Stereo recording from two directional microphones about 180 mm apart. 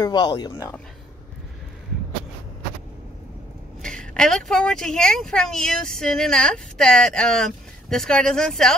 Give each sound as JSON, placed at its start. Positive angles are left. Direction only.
{"t": 0.0, "sound": "speech", "side_deg": 25}
{"t": 3.8, "sound": "speech", "side_deg": 5}